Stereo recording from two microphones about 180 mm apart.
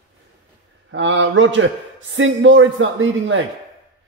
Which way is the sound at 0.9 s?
90° right.